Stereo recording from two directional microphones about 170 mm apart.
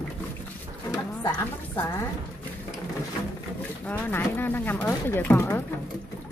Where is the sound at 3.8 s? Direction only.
10° left (ahead or behind).